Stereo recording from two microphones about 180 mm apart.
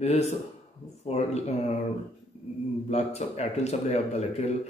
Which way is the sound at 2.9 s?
35° left (ahead or behind).